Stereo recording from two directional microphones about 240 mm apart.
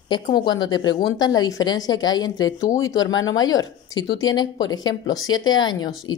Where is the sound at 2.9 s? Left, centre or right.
Left.